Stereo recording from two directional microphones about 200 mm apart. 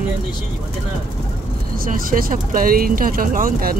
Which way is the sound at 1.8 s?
45° right (ahead or behind).